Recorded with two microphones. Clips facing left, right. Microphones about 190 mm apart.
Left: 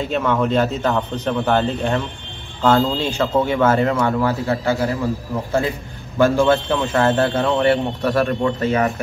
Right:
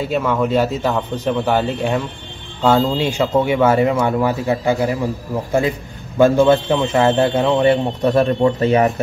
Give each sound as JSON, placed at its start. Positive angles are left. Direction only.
{"t": 0.1, "sound": "a man's voice", "side_deg": -5}